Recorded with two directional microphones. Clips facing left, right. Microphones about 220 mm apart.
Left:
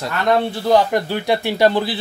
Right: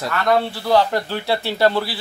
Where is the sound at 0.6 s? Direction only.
15° left (ahead or behind).